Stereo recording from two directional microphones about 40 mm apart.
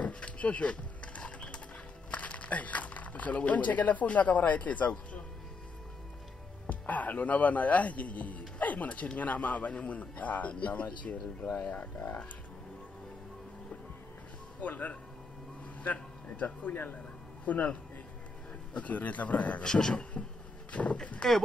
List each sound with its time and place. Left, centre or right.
0.0 s a sound: left
2.0 s speech: left
6.7 s a man's voice: left
14.6 s a man's voice: left
18.8 s a man's voice: left
19.6 s speech: centre
20.7 s a man's voice: left